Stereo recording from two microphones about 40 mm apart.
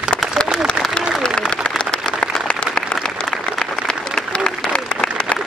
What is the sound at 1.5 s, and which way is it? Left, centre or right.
Applause, left.